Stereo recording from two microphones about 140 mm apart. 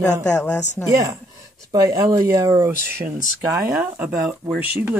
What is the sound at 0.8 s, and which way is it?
Speech, 25° right (ahead or behind).